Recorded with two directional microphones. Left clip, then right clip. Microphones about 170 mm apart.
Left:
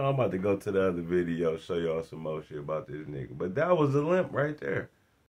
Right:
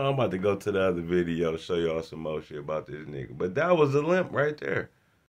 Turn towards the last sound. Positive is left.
turn(degrees=-30)  # may be behind; listen again after turning